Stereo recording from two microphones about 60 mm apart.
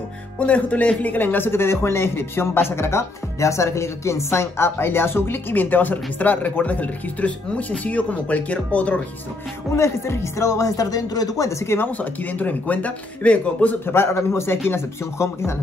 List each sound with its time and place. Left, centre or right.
0.4 s speech: left
9.8 s speech: left
11.6 s speech: left
12.0 s speech: left
13.8 s speech: left